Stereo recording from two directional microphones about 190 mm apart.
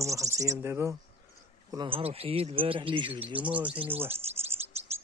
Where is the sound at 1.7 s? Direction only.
30° right (ahead or behind).